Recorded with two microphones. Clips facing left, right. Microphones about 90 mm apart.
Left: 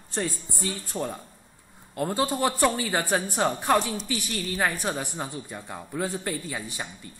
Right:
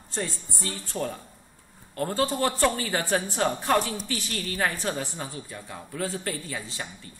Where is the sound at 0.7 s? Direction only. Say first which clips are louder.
Even; 15° left (ahead or behind).